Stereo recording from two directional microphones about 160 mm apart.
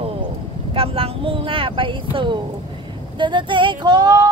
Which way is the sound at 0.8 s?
35° right (ahead or behind).